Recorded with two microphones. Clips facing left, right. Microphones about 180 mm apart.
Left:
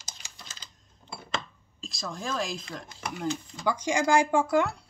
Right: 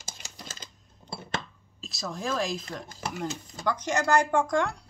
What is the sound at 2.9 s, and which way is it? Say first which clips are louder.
Speech: right 1 dB; 40° right (ahead or behind).